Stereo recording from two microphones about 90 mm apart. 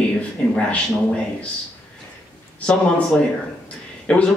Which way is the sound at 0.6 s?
15° left (ahead or behind).